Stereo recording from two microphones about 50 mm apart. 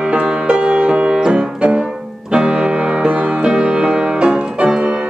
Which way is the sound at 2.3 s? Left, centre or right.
Centre.